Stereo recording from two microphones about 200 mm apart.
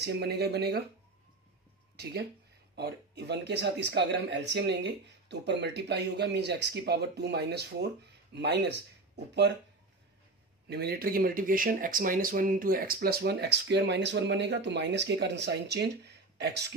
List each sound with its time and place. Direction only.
0.0 s speech: 55° right (ahead or behind)
2.0 s speech: 55° right (ahead or behind)
10.7 s speech: 55° right (ahead or behind)